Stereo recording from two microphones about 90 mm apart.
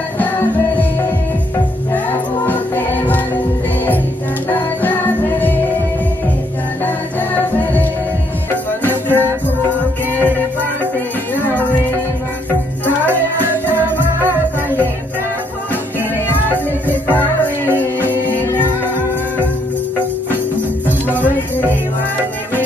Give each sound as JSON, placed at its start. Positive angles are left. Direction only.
{"t": 2.4, "sound": "music", "side_deg": 20}
{"t": 4.8, "sound": "music", "side_deg": 20}
{"t": 8.5, "sound": "music", "side_deg": 25}
{"t": 13.7, "sound": "music", "side_deg": -20}
{"t": 17.1, "sound": "music", "side_deg": 20}
{"t": 18.6, "sound": "music", "side_deg": -20}